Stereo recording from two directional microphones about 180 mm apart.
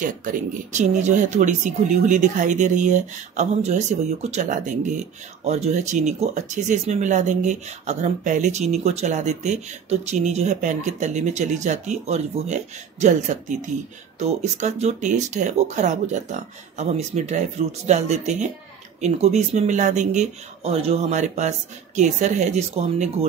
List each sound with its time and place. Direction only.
0.0 s speech: 45° right (ahead or behind)